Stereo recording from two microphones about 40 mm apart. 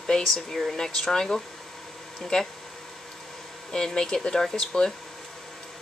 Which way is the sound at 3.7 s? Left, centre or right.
Centre.